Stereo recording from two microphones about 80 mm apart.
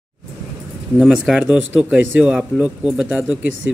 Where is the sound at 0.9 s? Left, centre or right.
Centre.